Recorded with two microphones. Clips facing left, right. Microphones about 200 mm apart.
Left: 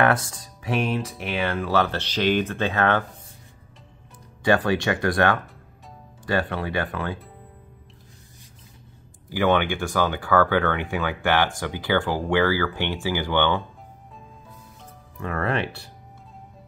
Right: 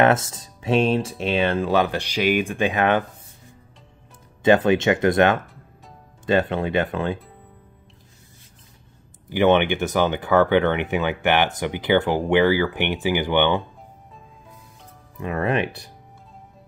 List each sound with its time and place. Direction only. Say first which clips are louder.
0.0 s speech: right 3 dB; 25° right (ahead or behind)
4.4 s speech: right 4 dB; 20° right (ahead or behind)
9.3 s speech: right 4 dB; 20° right (ahead or behind)
15.1 s speech: right 3 dB; 15° right (ahead or behind)